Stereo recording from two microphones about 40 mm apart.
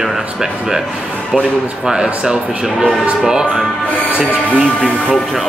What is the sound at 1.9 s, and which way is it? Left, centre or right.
Speech, centre.